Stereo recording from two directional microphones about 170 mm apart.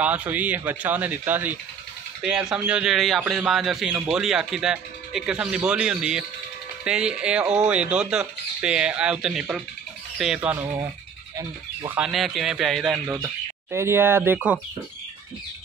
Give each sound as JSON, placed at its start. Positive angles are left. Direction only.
{"t": 0.0, "sound": "speech", "side_deg": -10}
{"t": 12.0, "sound": "speech", "side_deg": 0}
{"t": 13.0, "sound": "speech", "side_deg": -15}